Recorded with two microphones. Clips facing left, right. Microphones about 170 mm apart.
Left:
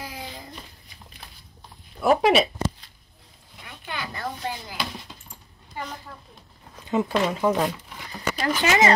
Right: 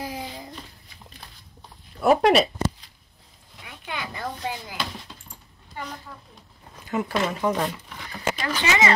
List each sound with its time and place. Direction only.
2.0 s speech: centre (ahead or behind)
3.6 s a sound: 10° right (ahead or behind)
6.9 s speech: 20° left (ahead or behind)
8.4 s speech: 45° left (ahead or behind)